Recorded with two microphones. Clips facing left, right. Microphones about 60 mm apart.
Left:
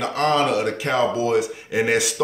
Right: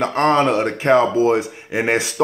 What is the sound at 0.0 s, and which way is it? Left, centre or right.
A man's voice, right.